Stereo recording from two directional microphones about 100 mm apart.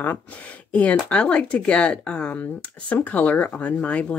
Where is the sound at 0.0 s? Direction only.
15° left (ahead or behind).